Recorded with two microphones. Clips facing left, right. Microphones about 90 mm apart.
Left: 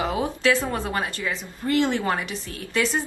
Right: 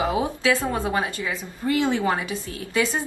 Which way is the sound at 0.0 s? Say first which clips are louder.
Even; 15° right (ahead or behind).